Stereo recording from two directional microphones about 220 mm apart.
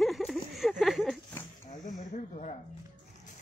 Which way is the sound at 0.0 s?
Centre (ahead or behind).